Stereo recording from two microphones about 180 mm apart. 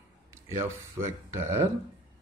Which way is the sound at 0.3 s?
15° right (ahead or behind).